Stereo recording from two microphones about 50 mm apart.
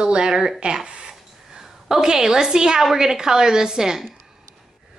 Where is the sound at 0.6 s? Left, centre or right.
Centre.